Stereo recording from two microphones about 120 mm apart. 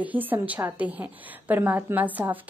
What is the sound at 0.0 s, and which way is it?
A woman's voice, 15° right (ahead or behind).